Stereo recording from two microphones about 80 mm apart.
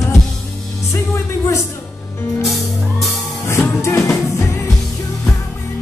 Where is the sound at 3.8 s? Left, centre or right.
Left.